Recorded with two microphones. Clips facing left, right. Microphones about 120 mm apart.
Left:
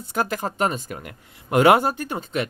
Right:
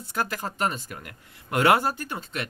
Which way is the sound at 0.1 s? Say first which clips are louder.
Left 5 dB; 20° left (ahead or behind).